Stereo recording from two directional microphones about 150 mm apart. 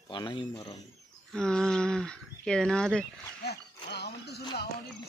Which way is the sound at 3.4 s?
90° left.